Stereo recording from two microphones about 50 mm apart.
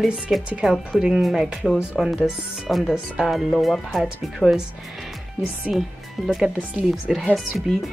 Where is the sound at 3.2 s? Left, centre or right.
Centre.